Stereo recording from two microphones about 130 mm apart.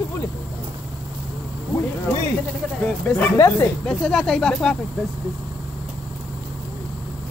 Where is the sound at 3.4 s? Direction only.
20° left (ahead or behind).